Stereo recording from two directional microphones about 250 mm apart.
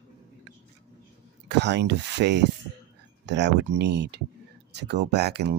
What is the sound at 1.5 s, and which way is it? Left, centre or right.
Speech, right.